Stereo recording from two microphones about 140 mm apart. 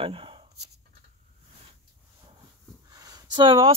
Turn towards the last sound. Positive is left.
turn(degrees=-40)  # may be behind; listen again after turning